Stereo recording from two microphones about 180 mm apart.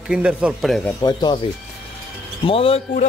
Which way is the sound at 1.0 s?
25° left (ahead or behind).